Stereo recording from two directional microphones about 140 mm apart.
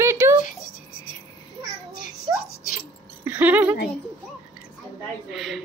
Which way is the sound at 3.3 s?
10° right (ahead or behind).